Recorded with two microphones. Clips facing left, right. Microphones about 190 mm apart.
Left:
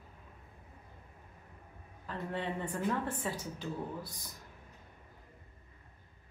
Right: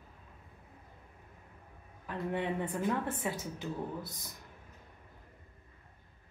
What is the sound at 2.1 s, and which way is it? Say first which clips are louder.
A woman's voice: right 3 dB; 15° right (ahead or behind).